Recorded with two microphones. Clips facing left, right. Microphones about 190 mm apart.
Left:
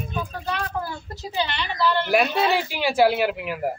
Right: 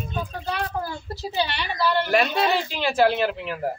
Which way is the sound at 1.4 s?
10° right (ahead or behind).